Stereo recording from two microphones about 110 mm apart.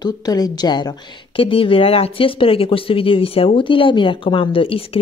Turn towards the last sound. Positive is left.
turn(degrees=55)  # may be behind; listen again after turning